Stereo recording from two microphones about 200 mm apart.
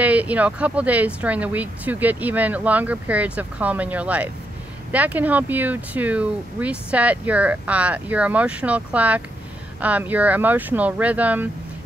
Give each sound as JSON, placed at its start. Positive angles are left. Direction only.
{"t": 0.0, "sound": "speech", "side_deg": -5}